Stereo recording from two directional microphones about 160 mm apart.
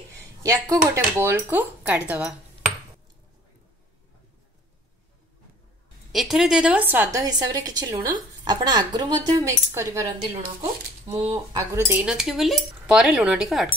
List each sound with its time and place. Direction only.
0.4 s speech: 20° right (ahead or behind)
6.1 s a woman's voice: centre (ahead or behind); by 10.1 s 20° right (ahead or behind)
11.1 s speech: 40° right (ahead or behind)
11.5 s speech: 15° right (ahead or behind)